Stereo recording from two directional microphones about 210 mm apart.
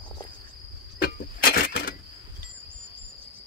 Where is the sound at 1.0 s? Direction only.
45° left (ahead or behind).